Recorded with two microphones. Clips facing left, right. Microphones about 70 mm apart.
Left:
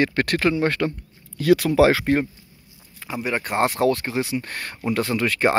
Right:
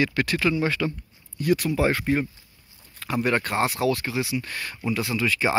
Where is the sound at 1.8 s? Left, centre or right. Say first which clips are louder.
Left 6 dB; left.